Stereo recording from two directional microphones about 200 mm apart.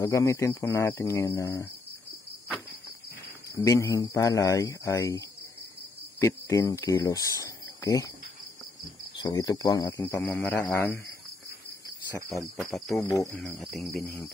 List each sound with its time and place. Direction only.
0.0 s speech: 15° left (ahead or behind)
3.5 s speech: 15° left (ahead or behind)
9.1 s speech: 20° left (ahead or behind)
12.2 s speech: 15° left (ahead or behind)
12.5 s cricket: centre (ahead or behind)
13.0 s speech: 15° left (ahead or behind)
13.3 s cricket: centre (ahead or behind)
13.8 s speech: 15° left (ahead or behind)